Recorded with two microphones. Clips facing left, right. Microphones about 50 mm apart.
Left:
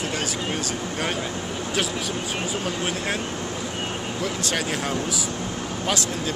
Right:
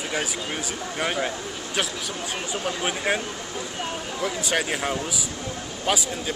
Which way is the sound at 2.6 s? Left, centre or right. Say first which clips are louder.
Even; centre.